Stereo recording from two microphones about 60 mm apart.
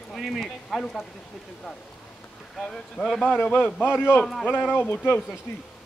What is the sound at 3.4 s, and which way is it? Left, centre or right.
Speech, left.